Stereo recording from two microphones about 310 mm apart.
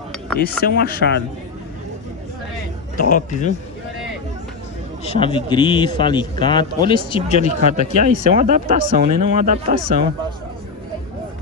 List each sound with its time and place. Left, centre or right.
0.4 s speech: left
3.0 s speech: left
5.0 s a man's voice: centre
7.6 s speech: right